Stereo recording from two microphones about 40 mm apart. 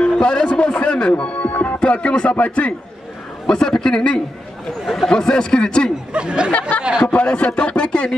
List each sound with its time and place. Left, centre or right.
0.0 s speech: left
1.8 s speech: left
3.4 s a man's voice: centre
6.1 s speech: right
7.0 s speech: left